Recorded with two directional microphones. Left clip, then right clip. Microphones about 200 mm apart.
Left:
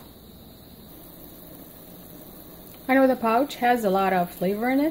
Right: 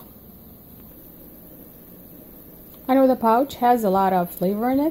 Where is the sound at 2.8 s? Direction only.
20° right (ahead or behind).